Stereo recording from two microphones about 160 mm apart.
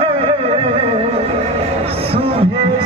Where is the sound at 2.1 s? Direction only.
35° right (ahead or behind).